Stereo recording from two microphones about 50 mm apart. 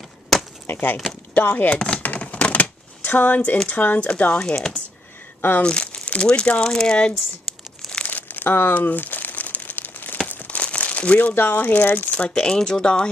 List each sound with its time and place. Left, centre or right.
0.7 s speech: left
1.8 s speech: centre
2.0 s typewriter: left
3.6 s speech: left
4.4 s speech: centre
5.6 s speech: left
8.1 s crumpling: left
11.3 s speech: left
12.1 s speech: centre